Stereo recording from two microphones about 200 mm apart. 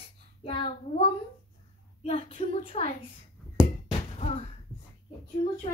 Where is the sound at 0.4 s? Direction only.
25° left (ahead or behind).